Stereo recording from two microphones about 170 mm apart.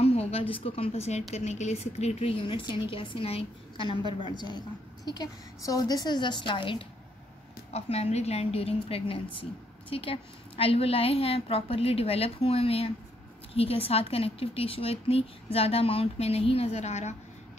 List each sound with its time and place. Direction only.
0.0 s a woman's voice: 35° left (ahead or behind)